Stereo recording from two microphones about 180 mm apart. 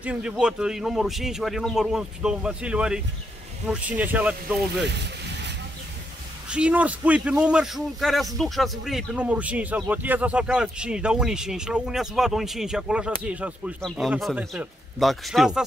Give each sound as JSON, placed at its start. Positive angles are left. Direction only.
{"t": 0.0, "sound": "speech", "side_deg": -5}
{"t": 4.8, "sound": "vehicle", "side_deg": -70}
{"t": 6.5, "sound": "speech", "side_deg": -5}